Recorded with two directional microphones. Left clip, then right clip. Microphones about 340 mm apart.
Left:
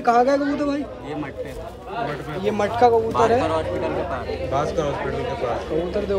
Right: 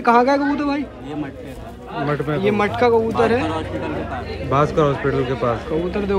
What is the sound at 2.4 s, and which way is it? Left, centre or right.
Speech, centre.